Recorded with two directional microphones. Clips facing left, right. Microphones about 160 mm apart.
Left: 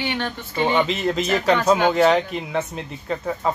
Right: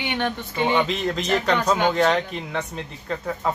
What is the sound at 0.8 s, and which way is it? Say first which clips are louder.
Speech: left 2 dB; 5° left (ahead or behind).